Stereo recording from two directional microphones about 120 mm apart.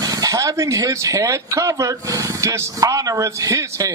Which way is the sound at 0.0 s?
30° right (ahead or behind).